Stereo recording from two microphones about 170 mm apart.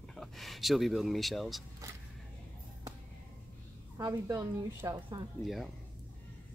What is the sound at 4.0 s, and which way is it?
A woman's voice, 20° right (ahead or behind).